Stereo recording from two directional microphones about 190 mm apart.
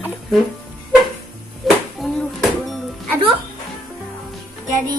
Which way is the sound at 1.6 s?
Centre (ahead or behind).